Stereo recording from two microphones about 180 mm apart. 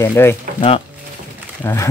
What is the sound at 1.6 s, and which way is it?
Speech, 15° left (ahead or behind).